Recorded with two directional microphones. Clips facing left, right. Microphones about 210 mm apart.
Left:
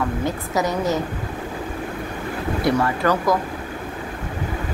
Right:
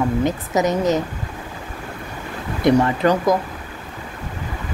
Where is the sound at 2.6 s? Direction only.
20° right (ahead or behind).